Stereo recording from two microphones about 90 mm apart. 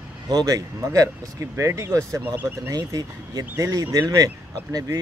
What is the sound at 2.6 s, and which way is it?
Speech, 45° right (ahead or behind).